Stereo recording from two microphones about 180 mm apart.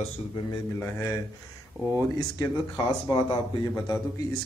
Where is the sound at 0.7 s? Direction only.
15° left (ahead or behind).